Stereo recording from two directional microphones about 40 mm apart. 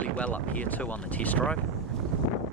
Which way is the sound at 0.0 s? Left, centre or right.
Left.